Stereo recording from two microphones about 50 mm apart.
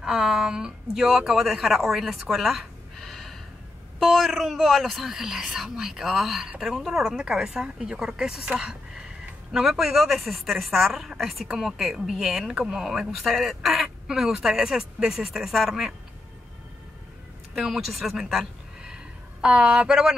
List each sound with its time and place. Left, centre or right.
0.0 s a woman's voice: centre
13.2 s a woman's voice: centre
17.6 s a woman's voice: centre
19.4 s speech: centre